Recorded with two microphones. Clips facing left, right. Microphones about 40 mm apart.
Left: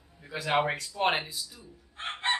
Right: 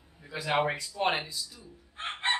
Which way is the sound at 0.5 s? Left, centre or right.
Centre.